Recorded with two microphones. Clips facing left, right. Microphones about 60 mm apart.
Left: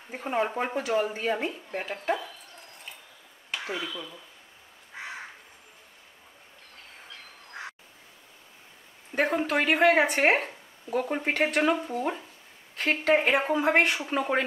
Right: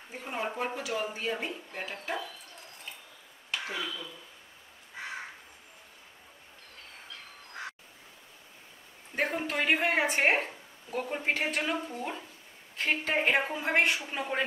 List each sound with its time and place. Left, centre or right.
0.1 s speech: left
3.6 s speech: left
9.1 s speech: left
12.7 s a woman's voice: left
13.7 s speech: left